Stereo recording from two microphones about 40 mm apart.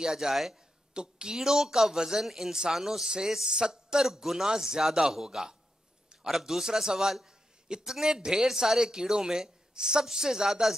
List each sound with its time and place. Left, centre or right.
0.0 s a man's voice: centre
0.9 s a man's voice: centre